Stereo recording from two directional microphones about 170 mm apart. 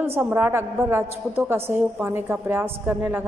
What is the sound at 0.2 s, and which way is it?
A woman's voice, 10° right (ahead or behind).